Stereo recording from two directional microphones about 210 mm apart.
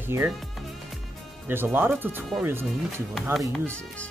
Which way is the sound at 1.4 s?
10° right (ahead or behind).